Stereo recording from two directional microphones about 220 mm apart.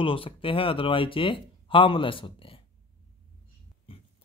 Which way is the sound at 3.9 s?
25° left (ahead or behind).